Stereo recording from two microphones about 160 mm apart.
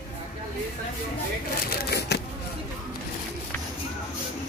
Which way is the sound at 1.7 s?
90° left.